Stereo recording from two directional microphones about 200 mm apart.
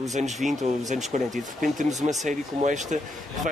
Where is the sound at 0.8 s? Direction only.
35° right (ahead or behind).